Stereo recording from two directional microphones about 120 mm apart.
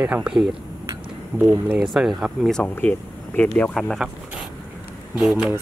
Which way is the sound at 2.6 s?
15° left (ahead or behind).